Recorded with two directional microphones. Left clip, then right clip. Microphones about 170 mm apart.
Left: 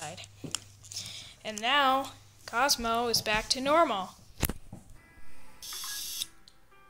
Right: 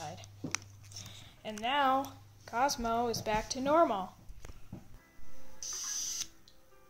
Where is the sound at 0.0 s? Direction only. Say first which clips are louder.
Left 3 dB; 5° left (ahead or behind).